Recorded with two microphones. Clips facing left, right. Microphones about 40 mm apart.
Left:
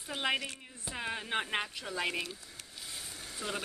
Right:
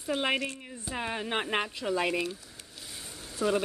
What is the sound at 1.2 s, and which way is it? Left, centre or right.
Speech, right.